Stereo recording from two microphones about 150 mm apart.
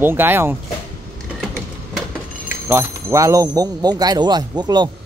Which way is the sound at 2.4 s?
15° right (ahead or behind).